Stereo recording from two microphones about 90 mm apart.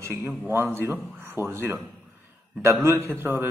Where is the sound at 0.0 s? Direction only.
30° right (ahead or behind).